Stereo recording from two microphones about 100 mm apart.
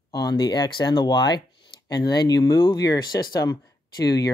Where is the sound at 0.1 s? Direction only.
45° left (ahead or behind).